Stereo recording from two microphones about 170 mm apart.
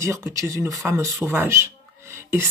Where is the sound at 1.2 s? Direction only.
15° right (ahead or behind).